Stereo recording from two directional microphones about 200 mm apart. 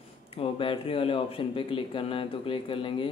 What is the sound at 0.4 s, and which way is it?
Speech, 25° left (ahead or behind).